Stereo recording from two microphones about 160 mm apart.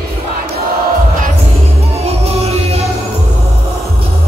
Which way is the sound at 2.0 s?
40° right (ahead or behind).